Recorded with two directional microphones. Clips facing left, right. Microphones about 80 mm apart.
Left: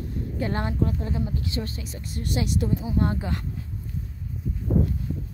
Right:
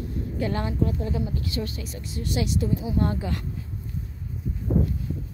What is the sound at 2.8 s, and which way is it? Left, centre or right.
Speech, left.